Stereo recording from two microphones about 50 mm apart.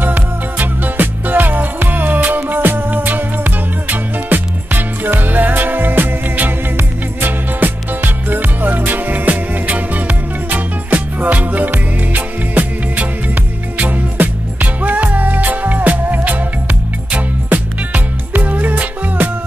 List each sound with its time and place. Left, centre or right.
0.0 s music: right